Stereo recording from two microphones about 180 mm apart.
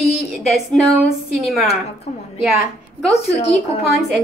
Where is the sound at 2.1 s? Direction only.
40° left (ahead or behind).